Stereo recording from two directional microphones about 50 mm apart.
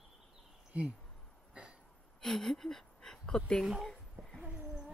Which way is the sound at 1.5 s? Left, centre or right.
Right.